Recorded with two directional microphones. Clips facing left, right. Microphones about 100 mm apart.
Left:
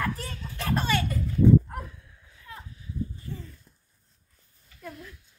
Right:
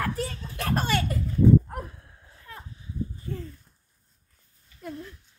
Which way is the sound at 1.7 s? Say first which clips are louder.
Right 2 dB; 40° right (ahead or behind).